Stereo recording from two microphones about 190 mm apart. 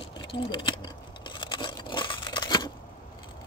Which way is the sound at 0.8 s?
25° left (ahead or behind).